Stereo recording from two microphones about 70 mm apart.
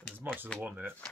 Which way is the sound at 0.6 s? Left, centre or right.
Right.